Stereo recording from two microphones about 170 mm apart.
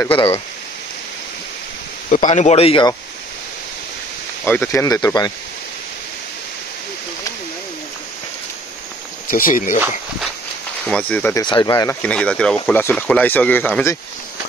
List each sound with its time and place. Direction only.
2.0 s speech: 45° left (ahead or behind)
4.5 s speech: 15° left (ahead or behind)
9.3 s speech: 55° left (ahead or behind)
10.9 s speech: 5° left (ahead or behind)
11.4 s speech: 25° left (ahead or behind)
12.0 s speech: 5° left (ahead or behind)